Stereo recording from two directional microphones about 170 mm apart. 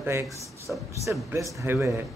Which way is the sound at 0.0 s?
15° right (ahead or behind).